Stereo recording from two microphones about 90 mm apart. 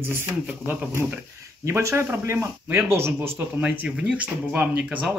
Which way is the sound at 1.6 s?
30° right (ahead or behind).